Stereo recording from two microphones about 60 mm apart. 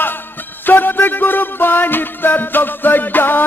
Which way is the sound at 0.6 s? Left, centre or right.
Left.